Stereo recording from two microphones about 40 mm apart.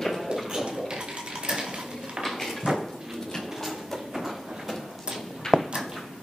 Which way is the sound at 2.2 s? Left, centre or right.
Centre.